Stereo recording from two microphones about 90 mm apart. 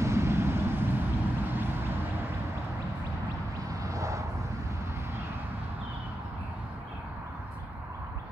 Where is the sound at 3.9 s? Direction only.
35° right (ahead or behind).